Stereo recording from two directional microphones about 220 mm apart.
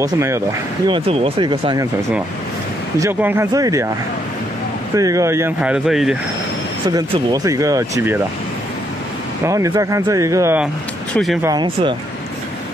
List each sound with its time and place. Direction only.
0.0 s speech: 10° right (ahead or behind)
0.8 s speech: 25° right (ahead or behind)
3.0 s speech: 10° right (ahead or behind)
4.9 s speech: 15° right (ahead or behind)
6.9 s speech: 15° right (ahead or behind)
9.4 s speech: 15° right (ahead or behind)
11.4 s speech: 20° right (ahead or behind)